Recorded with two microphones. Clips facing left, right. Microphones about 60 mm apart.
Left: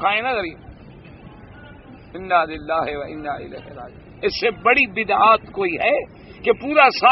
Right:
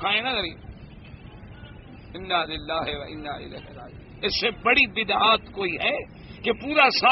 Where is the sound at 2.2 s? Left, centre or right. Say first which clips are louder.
Left 8 dB; left.